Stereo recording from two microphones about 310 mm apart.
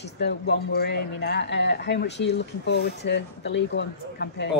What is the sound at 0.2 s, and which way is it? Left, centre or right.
Speech, left.